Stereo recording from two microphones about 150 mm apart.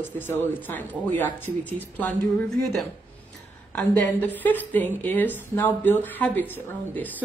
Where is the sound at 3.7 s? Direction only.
10° left (ahead or behind).